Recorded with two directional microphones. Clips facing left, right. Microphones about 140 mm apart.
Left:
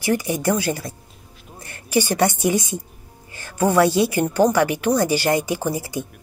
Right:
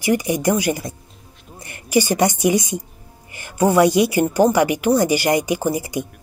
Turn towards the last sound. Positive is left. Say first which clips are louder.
# right 3 dB
turn(degrees=-15)  # may be behind; listen again after turning